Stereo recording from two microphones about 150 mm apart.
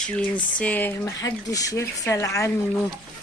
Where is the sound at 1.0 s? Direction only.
25° left (ahead or behind).